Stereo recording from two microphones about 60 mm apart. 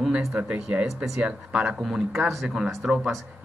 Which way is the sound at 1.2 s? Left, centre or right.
Centre.